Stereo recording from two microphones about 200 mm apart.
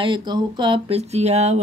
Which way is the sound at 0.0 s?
25° right (ahead or behind).